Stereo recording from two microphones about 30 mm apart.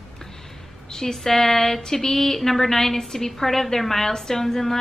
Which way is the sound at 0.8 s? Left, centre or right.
Centre.